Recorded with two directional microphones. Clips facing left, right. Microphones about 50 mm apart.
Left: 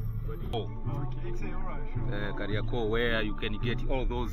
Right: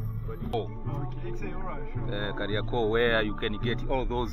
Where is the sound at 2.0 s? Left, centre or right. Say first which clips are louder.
Right 3 dB; right.